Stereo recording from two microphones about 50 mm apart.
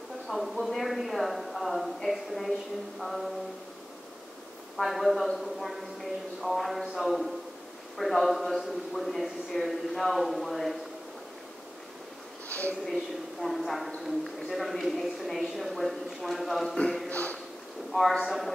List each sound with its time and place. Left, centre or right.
0.3 s a man's voice: centre
4.7 s a man's voice: centre
12.8 s a man's voice: centre
17.1 s a sound: left
17.9 s a man's voice: centre